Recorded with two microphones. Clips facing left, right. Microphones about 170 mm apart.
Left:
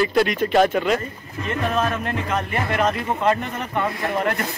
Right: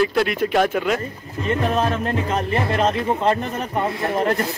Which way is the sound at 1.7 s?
35° right (ahead or behind).